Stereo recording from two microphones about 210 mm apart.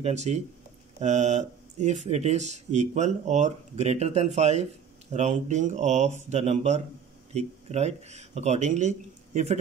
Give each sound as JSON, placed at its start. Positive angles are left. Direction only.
{"t": 0.0, "sound": "speech", "side_deg": -30}